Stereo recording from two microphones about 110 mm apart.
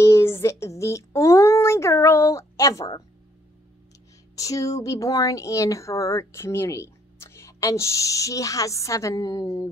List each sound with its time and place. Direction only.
0.0 s speech: 25° left (ahead or behind)
4.4 s speech: 30° left (ahead or behind)